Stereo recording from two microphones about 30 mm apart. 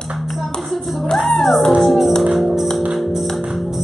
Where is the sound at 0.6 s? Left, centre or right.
Centre.